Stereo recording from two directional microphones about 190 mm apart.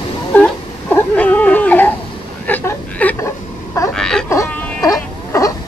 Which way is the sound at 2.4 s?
10° left (ahead or behind).